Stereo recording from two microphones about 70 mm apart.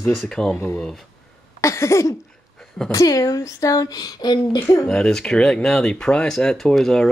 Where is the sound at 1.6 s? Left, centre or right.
Left.